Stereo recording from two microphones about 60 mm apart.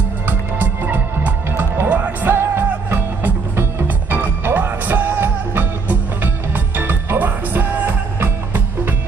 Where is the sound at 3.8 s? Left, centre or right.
Right.